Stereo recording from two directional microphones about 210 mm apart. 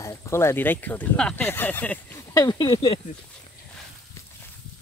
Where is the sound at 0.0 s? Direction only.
15° left (ahead or behind).